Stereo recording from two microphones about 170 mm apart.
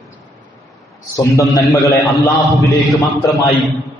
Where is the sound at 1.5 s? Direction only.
20° left (ahead or behind).